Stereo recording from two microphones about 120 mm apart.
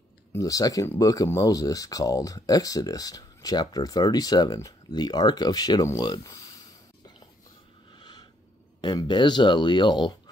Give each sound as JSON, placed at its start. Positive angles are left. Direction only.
{"t": 0.3, "sound": "speech", "side_deg": 30}
{"t": 7.9, "sound": "a sound", "side_deg": 40}
{"t": 8.8, "sound": "speech", "side_deg": 40}